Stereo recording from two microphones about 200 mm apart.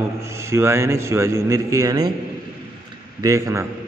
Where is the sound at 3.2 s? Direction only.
15° right (ahead or behind).